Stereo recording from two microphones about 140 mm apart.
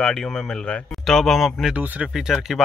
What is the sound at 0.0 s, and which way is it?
Speech, 5° left (ahead or behind).